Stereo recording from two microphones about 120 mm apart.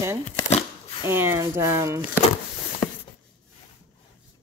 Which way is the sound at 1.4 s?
20° right (ahead or behind).